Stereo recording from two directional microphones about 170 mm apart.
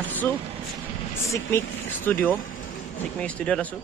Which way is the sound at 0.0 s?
10° left (ahead or behind).